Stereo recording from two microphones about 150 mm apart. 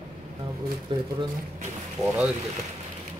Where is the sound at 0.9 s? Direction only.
35° right (ahead or behind).